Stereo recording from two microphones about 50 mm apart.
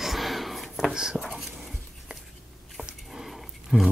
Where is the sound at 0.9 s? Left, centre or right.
Centre.